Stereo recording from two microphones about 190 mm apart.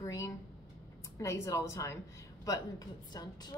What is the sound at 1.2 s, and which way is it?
A woman's voice, 15° left (ahead or behind).